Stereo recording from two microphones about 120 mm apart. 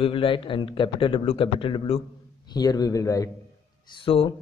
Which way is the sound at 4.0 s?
45° left (ahead or behind).